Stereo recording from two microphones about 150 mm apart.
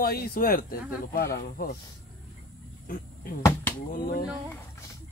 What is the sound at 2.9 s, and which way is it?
Speech, 70° left (ahead or behind).